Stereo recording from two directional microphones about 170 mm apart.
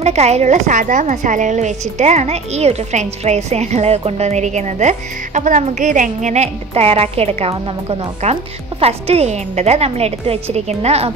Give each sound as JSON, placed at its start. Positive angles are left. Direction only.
{"t": 0.0, "sound": "a woman's voice", "side_deg": -40}